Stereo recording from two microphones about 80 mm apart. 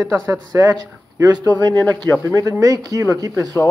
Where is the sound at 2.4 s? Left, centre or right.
Right.